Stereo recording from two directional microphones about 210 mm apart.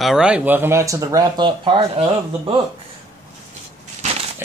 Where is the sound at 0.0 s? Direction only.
5° right (ahead or behind); by 2.0 s 20° right (ahead or behind).